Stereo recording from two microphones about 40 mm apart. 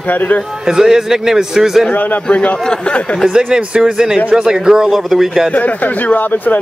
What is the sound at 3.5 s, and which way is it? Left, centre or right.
A man's voice, centre.